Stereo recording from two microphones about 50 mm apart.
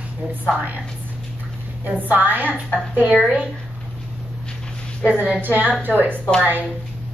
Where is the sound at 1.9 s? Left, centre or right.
Right.